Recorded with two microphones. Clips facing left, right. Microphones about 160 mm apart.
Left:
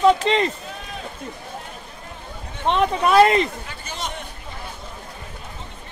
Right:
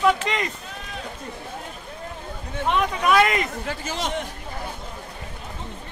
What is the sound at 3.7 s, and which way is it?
Speech, 90° right.